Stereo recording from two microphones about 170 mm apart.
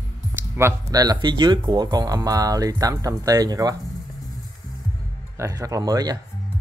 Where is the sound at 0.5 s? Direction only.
20° right (ahead or behind).